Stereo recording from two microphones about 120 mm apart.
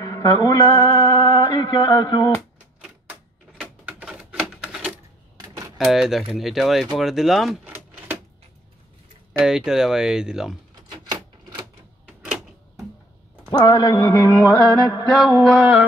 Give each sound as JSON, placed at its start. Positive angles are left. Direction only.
{"t": 0.0, "sound": "mantra", "side_deg": 30}
{"t": 2.8, "sound": "typewriter", "side_deg": -10}
{"t": 5.9, "sound": "speech", "side_deg": -5}
{"t": 7.6, "sound": "a sound", "side_deg": -15}
{"t": 9.4, "sound": "speech", "side_deg": -5}
{"t": 10.7, "sound": "typewriter", "side_deg": -35}
{"t": 13.5, "sound": "a sound", "side_deg": 35}
{"t": 15.0, "sound": "speech", "side_deg": 0}